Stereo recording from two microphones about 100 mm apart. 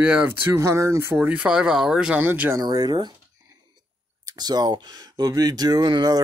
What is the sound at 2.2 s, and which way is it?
Speech, 20° right (ahead or behind).